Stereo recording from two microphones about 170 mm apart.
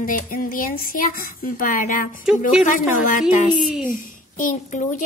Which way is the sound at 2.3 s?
5° right (ahead or behind).